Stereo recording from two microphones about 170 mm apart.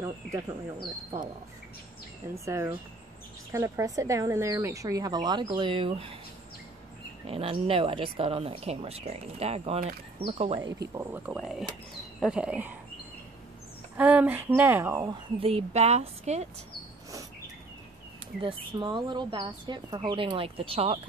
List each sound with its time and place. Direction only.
0.0 s speech: 20° right (ahead or behind)
2.3 s speech: 15° right (ahead or behind)
7.2 s speech: 35° right (ahead or behind)
10.8 s speech: 15° right (ahead or behind)
13.9 s speech: 10° right (ahead or behind)
15.4 s speech: 35° right (ahead or behind)
18.4 s speech: 30° right (ahead or behind)